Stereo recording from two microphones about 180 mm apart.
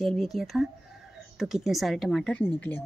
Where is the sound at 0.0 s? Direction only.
Centre (ahead or behind).